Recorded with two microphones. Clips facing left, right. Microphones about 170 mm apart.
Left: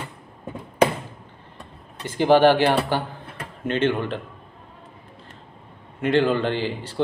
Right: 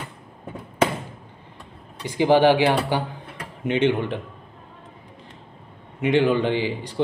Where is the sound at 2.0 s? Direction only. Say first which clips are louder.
Left 1 dB; 15° right (ahead or behind).